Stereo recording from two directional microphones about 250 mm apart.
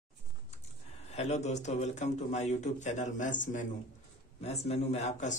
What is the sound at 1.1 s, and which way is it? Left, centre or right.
A man's voice, left.